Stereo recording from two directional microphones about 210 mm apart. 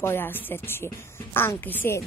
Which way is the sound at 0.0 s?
10° left (ahead or behind).